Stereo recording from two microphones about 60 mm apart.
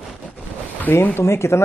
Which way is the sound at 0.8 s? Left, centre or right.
Left.